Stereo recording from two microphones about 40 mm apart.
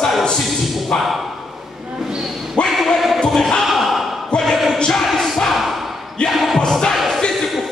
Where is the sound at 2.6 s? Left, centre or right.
Left.